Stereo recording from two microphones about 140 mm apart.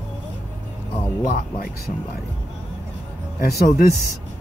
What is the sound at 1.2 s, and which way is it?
Speech, 80° left.